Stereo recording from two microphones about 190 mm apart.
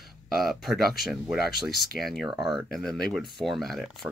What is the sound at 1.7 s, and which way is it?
Speech, 55° left (ahead or behind).